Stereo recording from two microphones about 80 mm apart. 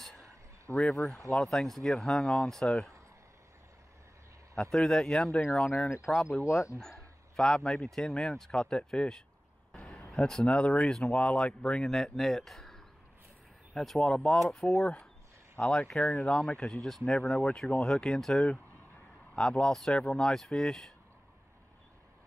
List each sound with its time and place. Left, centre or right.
0.7 s speech: centre
4.6 s speech: centre
6.1 s speech: left
6.8 s speech: centre
17.4 s speech: centre